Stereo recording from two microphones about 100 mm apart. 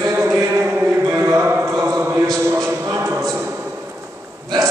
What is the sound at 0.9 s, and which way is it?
Music, 30° right (ahead or behind).